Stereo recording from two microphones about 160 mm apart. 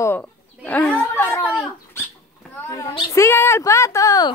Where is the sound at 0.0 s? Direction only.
10° left (ahead or behind).